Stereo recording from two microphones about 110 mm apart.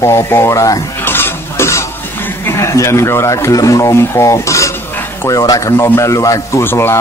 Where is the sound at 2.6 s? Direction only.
25° left (ahead or behind).